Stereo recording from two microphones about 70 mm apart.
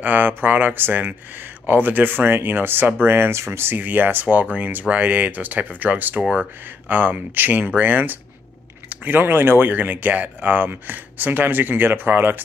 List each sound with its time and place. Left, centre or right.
0.0 s speech: right